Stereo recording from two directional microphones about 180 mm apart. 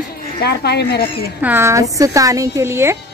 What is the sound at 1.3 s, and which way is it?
Speech, 10° right (ahead or behind).